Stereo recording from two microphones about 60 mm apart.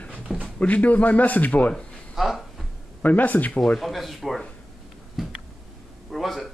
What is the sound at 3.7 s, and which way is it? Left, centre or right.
Speech, centre.